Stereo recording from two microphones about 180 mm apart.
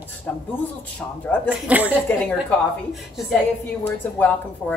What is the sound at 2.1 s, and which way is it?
Speech, 10° left (ahead or behind).